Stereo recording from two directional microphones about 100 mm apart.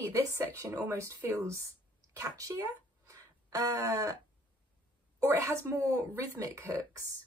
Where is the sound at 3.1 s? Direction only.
35° right (ahead or behind).